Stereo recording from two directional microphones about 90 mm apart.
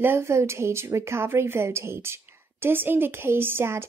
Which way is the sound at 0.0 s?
30° right (ahead or behind).